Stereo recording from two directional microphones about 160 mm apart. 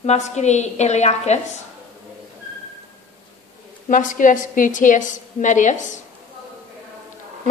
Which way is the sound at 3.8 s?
55° left (ahead or behind).